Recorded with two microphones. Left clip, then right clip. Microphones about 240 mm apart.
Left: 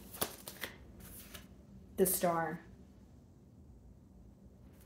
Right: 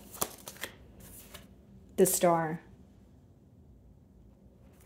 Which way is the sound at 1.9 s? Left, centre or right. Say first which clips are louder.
Right 7 dB; right.